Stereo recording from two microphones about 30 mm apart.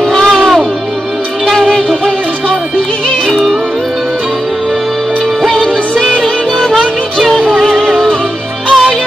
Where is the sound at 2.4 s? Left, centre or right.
Left.